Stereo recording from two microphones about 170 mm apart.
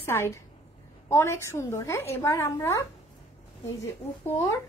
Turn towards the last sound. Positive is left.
turn(degrees=15)  # may be behind; listen again after turning